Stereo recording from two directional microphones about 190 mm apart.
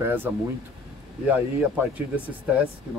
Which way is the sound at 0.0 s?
10° right (ahead or behind).